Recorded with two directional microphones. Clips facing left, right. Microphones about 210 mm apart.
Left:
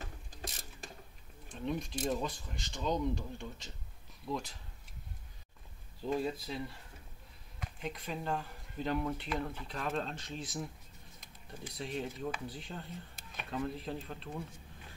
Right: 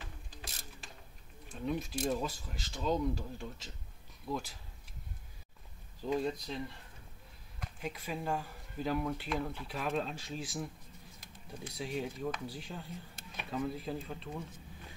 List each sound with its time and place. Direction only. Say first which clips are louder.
0.0 s a sound: left 4 dB; 45° left (ahead or behind)
1.5 s speech: right 1 dB; 5° right (ahead or behind)
6.0 s speech: right 1 dB; 5° left (ahead or behind)
7.6 s speech: even; 5° right (ahead or behind)